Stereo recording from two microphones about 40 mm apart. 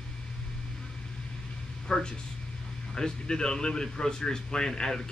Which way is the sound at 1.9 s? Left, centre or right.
Left.